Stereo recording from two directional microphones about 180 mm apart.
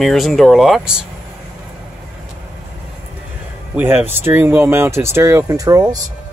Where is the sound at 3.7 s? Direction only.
10° right (ahead or behind).